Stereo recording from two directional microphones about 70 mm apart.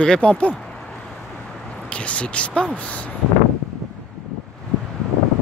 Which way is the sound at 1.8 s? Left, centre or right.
Centre.